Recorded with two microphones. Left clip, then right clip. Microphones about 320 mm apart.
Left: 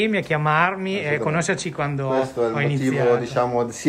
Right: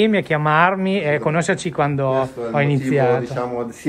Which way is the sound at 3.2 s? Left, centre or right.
Left.